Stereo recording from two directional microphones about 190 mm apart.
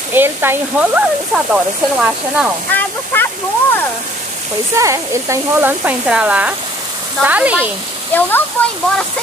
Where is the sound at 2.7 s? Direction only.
10° left (ahead or behind).